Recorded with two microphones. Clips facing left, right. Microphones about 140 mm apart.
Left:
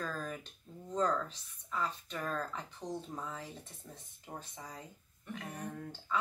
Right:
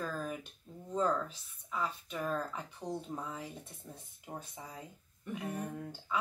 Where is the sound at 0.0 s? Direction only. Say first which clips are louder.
Right 2 dB; 10° right (ahead or behind).